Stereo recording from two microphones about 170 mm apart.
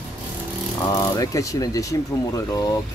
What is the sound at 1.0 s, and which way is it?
Speech, 20° left (ahead or behind).